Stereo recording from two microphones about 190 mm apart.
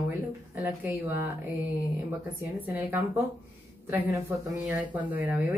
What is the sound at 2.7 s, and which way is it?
Speech, 10° right (ahead or behind).